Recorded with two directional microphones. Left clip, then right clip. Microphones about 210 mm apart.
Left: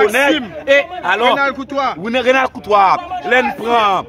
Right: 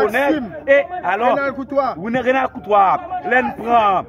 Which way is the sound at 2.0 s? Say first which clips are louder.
Left 4 dB; 10° left (ahead or behind).